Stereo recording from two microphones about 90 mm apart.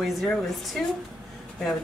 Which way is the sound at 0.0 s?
Centre (ahead or behind).